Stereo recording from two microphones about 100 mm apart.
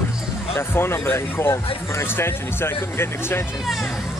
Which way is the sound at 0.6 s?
25° left (ahead or behind).